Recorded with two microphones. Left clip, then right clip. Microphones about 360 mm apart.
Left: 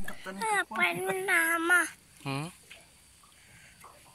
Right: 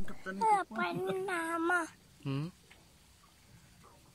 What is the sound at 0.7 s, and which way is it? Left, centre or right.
Speech, centre.